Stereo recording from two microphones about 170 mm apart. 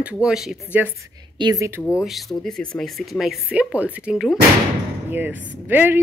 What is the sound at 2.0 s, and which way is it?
A woman's voice, centre (ahead or behind).